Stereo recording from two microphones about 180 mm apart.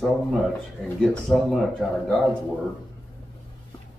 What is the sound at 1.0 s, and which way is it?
Speech, centre (ahead or behind).